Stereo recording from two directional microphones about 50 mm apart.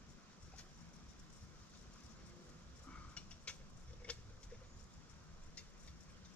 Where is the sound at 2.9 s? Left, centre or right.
Left.